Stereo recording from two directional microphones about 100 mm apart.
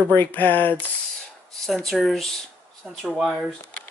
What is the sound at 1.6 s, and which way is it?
Speech, centre (ahead or behind).